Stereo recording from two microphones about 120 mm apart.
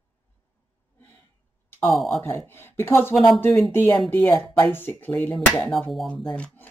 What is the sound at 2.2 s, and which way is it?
Speech, 20° left (ahead or behind).